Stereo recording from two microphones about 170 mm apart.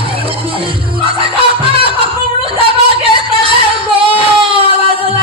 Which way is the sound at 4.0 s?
30° right (ahead or behind).